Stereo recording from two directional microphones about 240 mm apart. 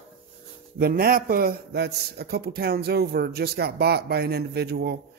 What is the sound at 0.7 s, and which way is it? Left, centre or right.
A man's voice, right.